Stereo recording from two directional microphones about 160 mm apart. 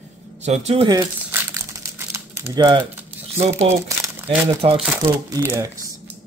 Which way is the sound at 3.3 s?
40° right (ahead or behind).